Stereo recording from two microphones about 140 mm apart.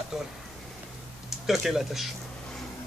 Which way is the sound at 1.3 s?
Centre (ahead or behind).